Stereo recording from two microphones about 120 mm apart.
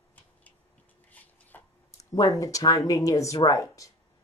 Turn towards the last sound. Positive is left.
turn(degrees=25)  # may be behind; listen again after turning